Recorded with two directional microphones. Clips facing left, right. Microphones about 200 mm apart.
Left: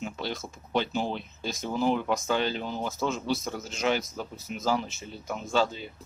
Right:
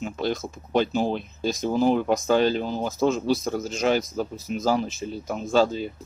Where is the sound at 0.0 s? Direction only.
40° right (ahead or behind).